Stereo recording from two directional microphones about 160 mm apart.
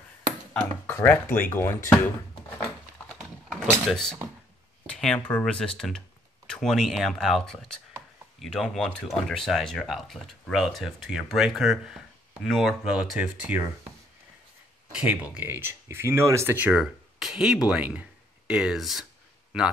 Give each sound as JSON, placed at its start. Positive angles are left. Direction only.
{"t": 0.5, "sound": "speech", "side_deg": 15}
{"t": 3.2, "sound": "a sound", "side_deg": 0}
{"t": 4.8, "sound": "speech", "side_deg": 5}
{"t": 14.9, "sound": "speech", "side_deg": -5}